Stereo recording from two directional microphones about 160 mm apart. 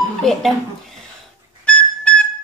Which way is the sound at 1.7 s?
10° left (ahead or behind).